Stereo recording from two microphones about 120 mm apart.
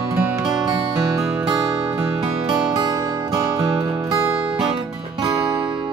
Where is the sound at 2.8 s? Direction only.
30° right (ahead or behind).